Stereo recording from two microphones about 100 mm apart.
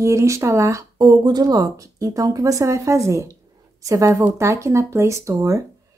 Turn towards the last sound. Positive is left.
turn(degrees=-35)  # may be behind; listen again after turning